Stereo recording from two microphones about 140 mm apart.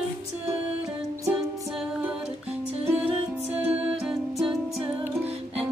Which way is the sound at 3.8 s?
5° right (ahead or behind).